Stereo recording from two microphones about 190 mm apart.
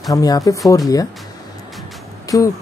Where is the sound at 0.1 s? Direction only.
20° left (ahead or behind).